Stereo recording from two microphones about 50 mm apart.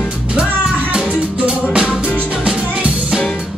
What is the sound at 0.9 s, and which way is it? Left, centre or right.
Music, centre.